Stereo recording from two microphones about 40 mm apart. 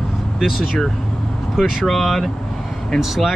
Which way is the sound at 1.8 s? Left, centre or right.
Centre.